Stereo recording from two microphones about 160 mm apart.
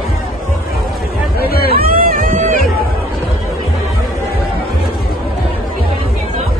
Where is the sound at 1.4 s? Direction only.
75° left (ahead or behind).